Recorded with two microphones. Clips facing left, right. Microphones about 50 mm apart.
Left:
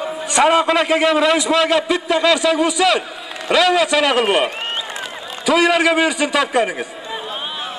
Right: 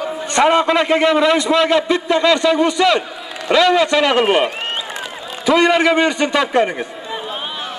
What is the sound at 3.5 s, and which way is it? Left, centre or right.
Run, centre.